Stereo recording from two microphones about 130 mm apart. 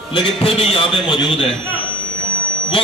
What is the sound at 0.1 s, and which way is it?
A man's voice, 45° left (ahead or behind).